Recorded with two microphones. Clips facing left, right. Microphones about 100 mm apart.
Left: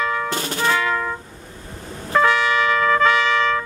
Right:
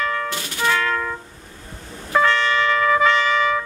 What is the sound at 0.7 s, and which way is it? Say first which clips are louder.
Music: even; 10° left (ahead or behind).